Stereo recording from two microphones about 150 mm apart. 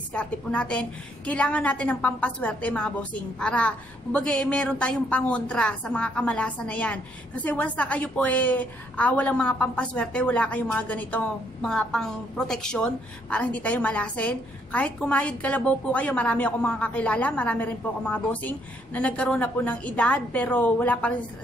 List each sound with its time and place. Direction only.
0.1 s a woman's voice: 5° left (ahead or behind)